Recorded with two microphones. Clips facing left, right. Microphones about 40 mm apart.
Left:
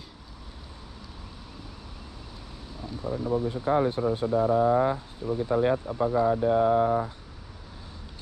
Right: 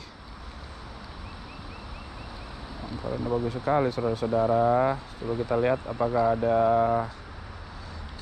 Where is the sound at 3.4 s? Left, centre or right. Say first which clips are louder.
Even; right.